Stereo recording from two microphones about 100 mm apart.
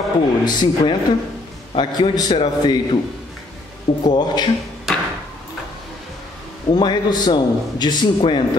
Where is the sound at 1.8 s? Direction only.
50° left (ahead or behind).